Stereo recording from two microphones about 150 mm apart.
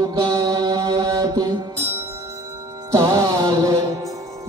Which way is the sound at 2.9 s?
20° right (ahead or behind).